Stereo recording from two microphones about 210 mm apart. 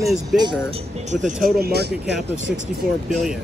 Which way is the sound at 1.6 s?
50° right (ahead or behind).